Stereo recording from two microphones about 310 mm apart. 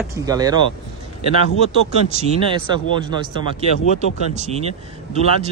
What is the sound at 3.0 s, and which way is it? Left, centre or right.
Speech, centre.